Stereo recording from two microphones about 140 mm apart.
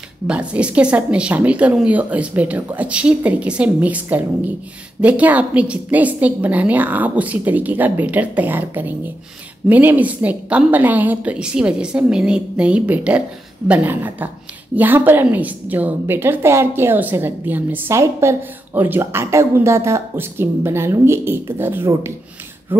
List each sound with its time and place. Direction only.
0.3 s a woman's voice: 10° right (ahead or behind)